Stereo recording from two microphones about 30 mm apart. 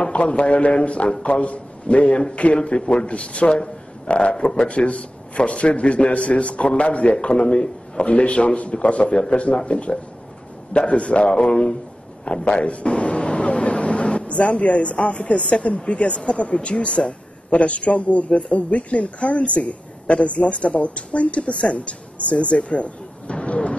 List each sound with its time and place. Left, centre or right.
0.0 s a man's voice: left
8.0 s a woman's voice: left
12.3 s a man's voice: left
21.7 s music: left